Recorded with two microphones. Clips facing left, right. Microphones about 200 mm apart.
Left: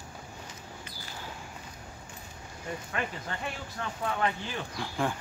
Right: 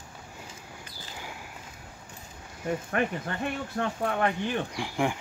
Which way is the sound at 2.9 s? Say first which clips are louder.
Right 5 dB; 60° right (ahead or behind).